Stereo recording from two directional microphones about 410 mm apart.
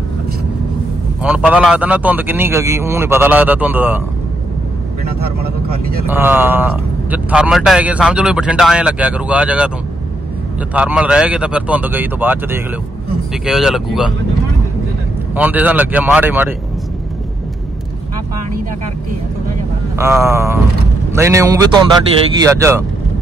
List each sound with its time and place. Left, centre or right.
1.2 s a man's voice: centre
5.4 s speech: right
6.0 s a man's voice: centre
10.7 s a man's voice: centre
15.3 s a man's voice: centre
20.0 s a man's voice: centre